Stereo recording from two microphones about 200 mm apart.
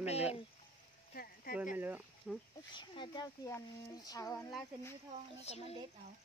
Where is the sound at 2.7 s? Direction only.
25° left (ahead or behind).